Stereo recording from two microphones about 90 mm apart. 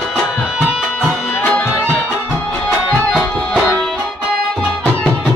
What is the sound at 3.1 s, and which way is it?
Music, 5° left (ahead or behind).